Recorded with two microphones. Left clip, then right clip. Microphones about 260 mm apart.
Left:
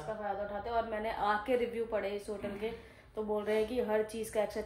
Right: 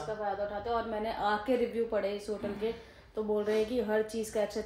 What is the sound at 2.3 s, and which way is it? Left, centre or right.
A woman's voice, centre.